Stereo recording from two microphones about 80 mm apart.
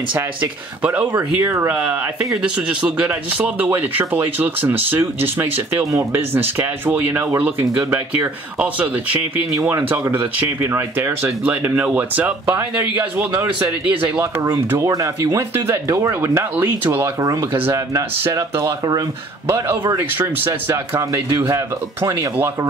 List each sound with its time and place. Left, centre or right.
0.1 s speech: centre
9.6 s speech: right; by 12.4 s centre
13.6 s speech: right
14.9 s speech: right
15.5 s speech: right
17.2 s speech: right
20.2 s speech: right